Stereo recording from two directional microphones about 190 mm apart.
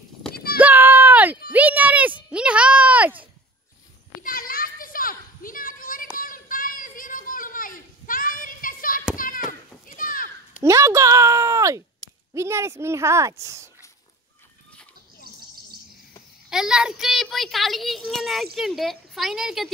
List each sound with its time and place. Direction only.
0.3 s clip-clop: 55° left (ahead or behind)
0.6 s a sound: 10° right (ahead or behind)
4.2 s children playing: 50° left (ahead or behind)
10.6 s a sound: 15° right (ahead or behind)
12.4 s a woman's voice: 15° right (ahead or behind)
16.4 s a child's voice: 5° right (ahead or behind)